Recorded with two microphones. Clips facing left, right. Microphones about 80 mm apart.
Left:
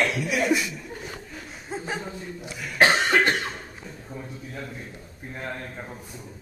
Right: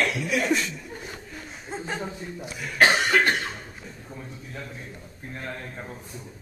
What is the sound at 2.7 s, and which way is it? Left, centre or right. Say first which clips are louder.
Cough: even; left.